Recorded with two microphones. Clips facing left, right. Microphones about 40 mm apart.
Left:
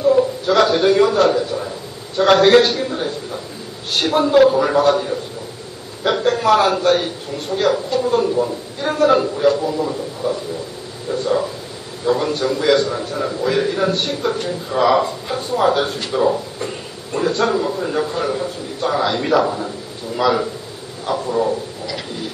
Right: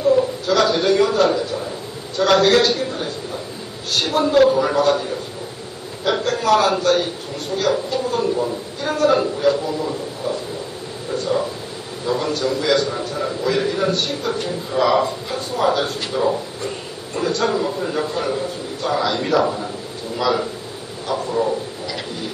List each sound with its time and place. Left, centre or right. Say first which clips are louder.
0.5 s a man's voice: left 2 dB; centre
2.1 s a man's voice: left 3 dB; left
2.7 s a man's voice: left 1 dB; centre
6.2 s a man's voice: left 2 dB; centre
7.7 s a man's voice: left 3 dB; centre
12.1 s a man's voice: left 3 dB; centre
17.5 s a man's voice: left 2 dB; centre
21.1 s a sound: left 2 dB; centre